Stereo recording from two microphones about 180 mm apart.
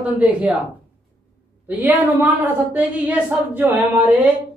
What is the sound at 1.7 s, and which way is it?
A woman's voice, 10° right (ahead or behind).